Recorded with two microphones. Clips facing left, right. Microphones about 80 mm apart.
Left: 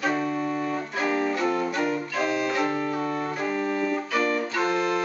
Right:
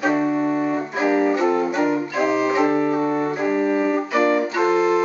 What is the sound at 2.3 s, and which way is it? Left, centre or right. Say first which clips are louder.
Organ: right 8 dB; centre.